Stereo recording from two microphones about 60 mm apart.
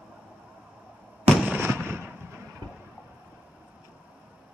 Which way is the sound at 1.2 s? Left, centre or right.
Right.